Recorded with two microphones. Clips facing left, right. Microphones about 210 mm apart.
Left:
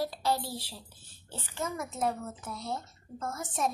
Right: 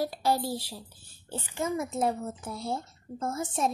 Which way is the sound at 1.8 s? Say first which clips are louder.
Right 2 dB; 30° right (ahead or behind).